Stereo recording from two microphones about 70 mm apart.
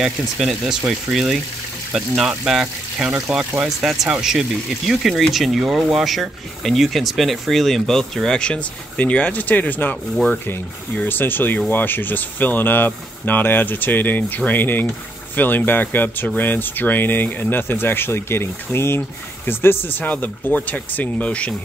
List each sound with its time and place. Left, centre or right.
0.0 s speech: centre; by 9.9 s left
10.1 s rub: centre
11.0 s speech: left